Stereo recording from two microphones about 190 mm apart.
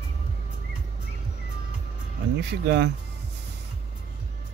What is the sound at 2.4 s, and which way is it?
Speech, 65° right (ahead or behind).